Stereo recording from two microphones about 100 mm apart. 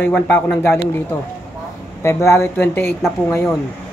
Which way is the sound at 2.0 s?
30° left (ahead or behind).